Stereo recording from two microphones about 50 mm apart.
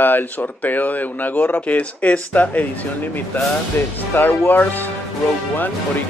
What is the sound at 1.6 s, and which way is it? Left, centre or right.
Speech, left.